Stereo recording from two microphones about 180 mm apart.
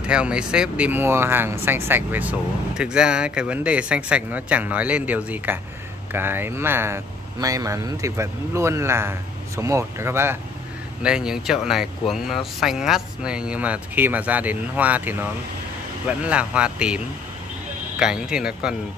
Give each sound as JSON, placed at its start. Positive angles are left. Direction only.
{"t": 0.0, "sound": "speech", "side_deg": -5}